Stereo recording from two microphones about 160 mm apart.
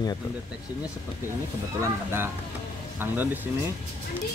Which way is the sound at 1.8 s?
15° right (ahead or behind).